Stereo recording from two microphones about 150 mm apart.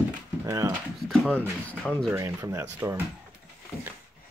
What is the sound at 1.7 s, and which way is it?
Speech, 5° left (ahead or behind).